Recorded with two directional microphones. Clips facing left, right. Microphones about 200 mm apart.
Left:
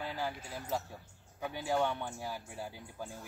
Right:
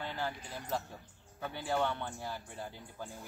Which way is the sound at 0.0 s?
10° left (ahead or behind).